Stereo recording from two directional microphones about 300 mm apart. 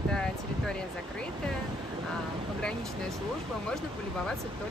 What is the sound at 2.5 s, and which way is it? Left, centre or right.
Speech, centre.